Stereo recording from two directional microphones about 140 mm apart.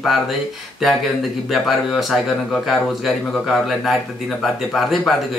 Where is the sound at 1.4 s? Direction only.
Centre (ahead or behind).